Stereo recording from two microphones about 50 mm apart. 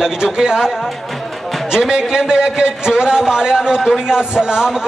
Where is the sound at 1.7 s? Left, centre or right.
Centre.